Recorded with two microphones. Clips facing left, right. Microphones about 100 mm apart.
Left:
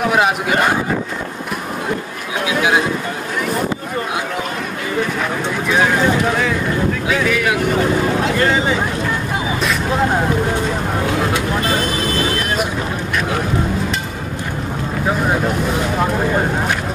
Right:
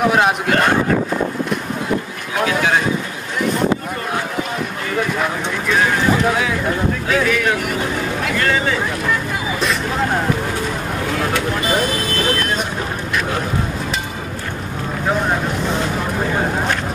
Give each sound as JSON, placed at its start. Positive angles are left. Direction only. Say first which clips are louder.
{"t": 0.1, "sound": "speech", "louder": "even", "side_deg": 5}
{"t": 2.4, "sound": "speech", "louder": "left 1 dB", "side_deg": 10}
{"t": 7.1, "sound": "speech", "louder": "right 1 dB", "side_deg": 0}
{"t": 8.2, "sound": "speech", "louder": "left 3 dB", "side_deg": 25}